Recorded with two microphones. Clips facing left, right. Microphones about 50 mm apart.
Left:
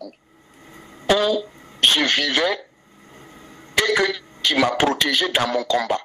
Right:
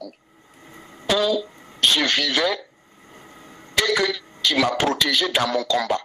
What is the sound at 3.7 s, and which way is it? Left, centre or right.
Speech, left.